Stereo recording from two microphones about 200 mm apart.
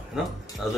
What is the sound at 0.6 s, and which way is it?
Speech, centre (ahead or behind).